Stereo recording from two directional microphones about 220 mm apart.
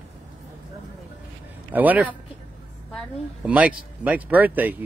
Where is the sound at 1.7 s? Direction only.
5° right (ahead or behind).